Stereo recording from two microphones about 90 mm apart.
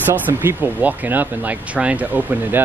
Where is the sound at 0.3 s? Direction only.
25° right (ahead or behind).